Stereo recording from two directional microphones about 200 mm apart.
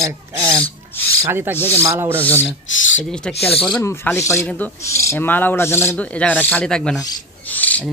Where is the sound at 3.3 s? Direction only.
30° left (ahead or behind).